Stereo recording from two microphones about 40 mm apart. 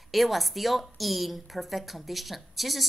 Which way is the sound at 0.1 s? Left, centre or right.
Centre.